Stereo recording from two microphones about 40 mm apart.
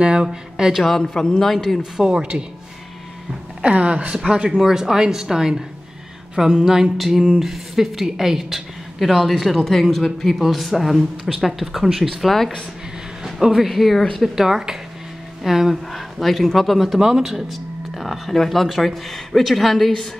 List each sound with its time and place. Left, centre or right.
0.0 s speech: centre
1.1 s a man's voice: centre
1.8 s speech: right
3.6 s speech: right; by 5.6 s centre
6.6 s speech: centre
13.2 s a sound: centre
13.7 s speech: centre
15.9 s speech: centre
17.0 s speech: centre